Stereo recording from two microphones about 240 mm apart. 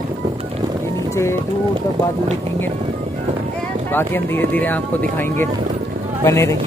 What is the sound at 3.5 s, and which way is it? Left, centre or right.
Speech, centre.